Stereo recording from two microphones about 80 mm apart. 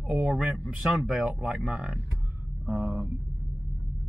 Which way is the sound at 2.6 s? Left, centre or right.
Centre.